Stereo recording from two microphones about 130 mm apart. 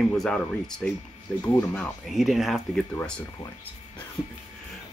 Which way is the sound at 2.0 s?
Centre (ahead or behind).